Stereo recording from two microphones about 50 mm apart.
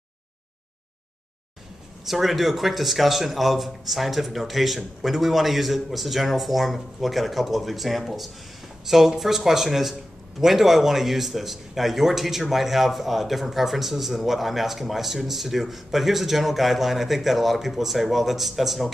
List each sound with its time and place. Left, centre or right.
2.0 s speech: centre